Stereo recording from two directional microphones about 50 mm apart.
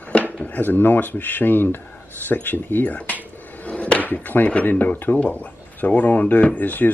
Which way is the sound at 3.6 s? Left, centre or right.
Left.